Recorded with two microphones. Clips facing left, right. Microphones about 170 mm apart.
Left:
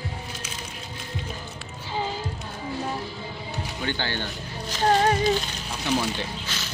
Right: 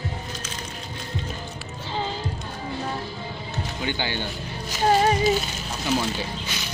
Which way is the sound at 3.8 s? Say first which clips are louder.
Right 1 dB; 15° right (ahead or behind).